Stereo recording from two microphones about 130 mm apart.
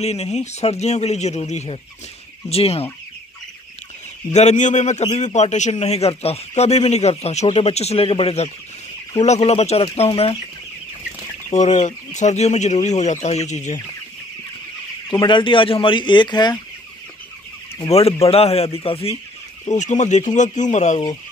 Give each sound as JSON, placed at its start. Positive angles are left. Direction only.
{"t": 0.0, "sound": "a man's voice", "side_deg": 55}
{"t": 4.3, "sound": "a man's voice", "side_deg": 60}
{"t": 11.5, "sound": "a man's voice", "side_deg": 65}
{"t": 15.0, "sound": "speech", "side_deg": 35}
{"t": 17.8, "sound": "speech", "side_deg": 50}
{"t": 19.6, "sound": "a man's voice", "side_deg": 65}